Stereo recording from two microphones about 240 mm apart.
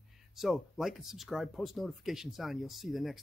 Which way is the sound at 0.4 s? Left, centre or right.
Centre.